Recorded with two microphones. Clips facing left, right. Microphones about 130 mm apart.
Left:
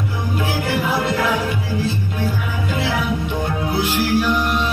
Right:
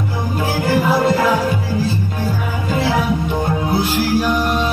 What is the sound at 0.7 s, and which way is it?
Music, 40° right (ahead or behind).